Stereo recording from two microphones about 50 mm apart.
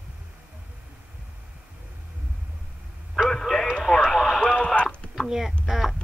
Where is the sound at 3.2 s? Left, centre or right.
Centre.